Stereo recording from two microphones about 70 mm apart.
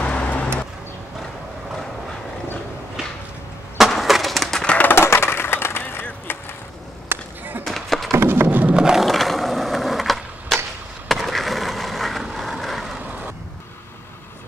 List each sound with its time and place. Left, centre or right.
0.0 s vehicle: centre
3.7 s skateboard: centre
4.9 s skateboard: left
6.3 s vehicle: left
7.1 s a sound: right
7.6 s a sound: centre
8.2 s music: right
8.7 s a sound: centre
9.0 s skateboard: centre